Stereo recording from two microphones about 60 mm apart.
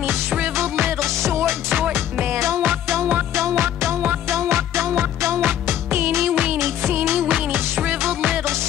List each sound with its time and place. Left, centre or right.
0.6 s music: right
2.2 s music: right
6.6 s music: right